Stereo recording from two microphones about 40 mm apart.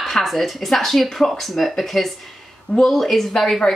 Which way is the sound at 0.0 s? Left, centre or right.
Centre.